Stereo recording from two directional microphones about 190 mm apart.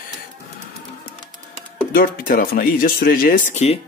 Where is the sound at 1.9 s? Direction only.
50° left (ahead or behind).